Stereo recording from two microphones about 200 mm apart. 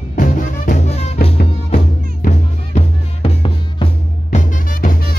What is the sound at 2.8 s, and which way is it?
Music, 30° left (ahead or behind).